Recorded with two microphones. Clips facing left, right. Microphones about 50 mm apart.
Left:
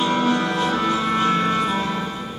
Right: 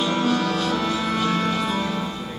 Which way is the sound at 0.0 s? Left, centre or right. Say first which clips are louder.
Left 2 dB; left.